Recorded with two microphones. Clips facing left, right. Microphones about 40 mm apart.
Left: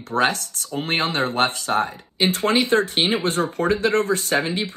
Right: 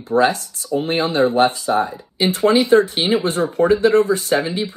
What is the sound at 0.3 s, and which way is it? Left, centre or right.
Speech, left.